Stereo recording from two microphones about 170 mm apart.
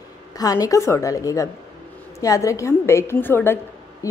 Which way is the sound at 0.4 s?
20° left (ahead or behind).